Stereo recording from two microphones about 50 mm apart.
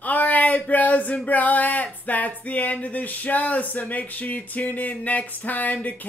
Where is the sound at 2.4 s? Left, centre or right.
Left.